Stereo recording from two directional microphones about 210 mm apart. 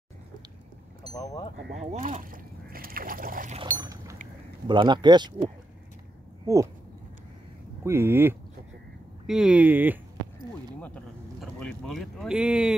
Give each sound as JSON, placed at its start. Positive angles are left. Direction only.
{"t": 1.1, "sound": "speech", "side_deg": 20}
{"t": 1.7, "sound": "speech", "side_deg": -35}
{"t": 3.7, "sound": "boat", "side_deg": -15}
{"t": 4.6, "sound": "speech", "side_deg": -20}
{"t": 6.4, "sound": "speech", "side_deg": -15}
{"t": 7.8, "sound": "speech", "side_deg": -10}
{"t": 11.6, "sound": "speech", "side_deg": 0}